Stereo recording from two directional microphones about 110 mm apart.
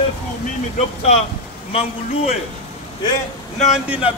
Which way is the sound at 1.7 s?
65° left (ahead or behind).